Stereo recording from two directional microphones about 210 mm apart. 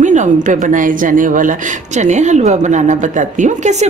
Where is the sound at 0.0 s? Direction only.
35° right (ahead or behind).